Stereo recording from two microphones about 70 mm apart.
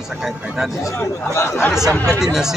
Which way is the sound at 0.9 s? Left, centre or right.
Left.